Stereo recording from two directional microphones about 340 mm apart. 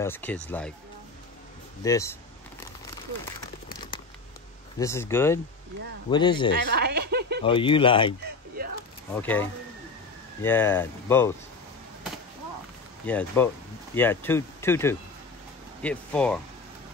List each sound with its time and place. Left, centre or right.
0.0 s speech: centre
1.8 s speech: centre
4.7 s speech: centre
6.6 s a sound: right
7.4 s speech: centre
8.6 s a sound: right
9.1 s speech: centre
13.0 s speech: centre